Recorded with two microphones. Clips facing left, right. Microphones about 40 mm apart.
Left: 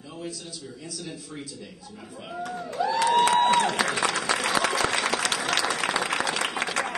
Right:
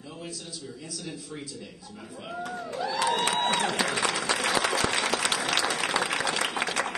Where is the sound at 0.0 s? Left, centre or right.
Centre.